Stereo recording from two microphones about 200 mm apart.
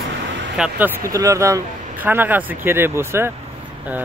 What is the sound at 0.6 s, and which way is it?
Speech, 10° right (ahead or behind).